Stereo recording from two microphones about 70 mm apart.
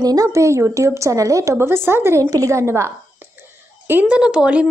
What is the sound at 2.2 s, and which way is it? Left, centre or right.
Speech, right.